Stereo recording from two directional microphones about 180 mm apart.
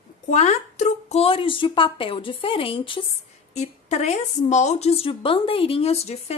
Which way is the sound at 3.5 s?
40° left (ahead or behind).